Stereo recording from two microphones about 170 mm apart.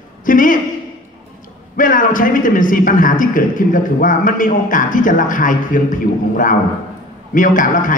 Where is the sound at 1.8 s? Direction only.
50° left (ahead or behind).